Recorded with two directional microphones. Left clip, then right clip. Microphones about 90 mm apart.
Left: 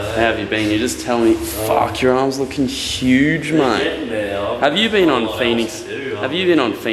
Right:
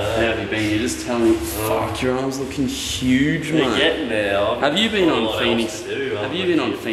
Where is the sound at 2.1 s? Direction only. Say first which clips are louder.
Left 6 dB; 20° left (ahead or behind).